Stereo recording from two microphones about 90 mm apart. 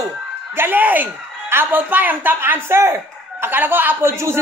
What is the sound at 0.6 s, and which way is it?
A man's voice, 20° right (ahead or behind).